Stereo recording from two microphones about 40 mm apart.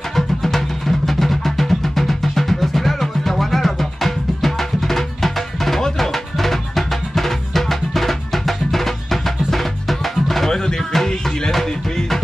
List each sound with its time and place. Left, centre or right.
0.1 s music: centre
10.5 s music: centre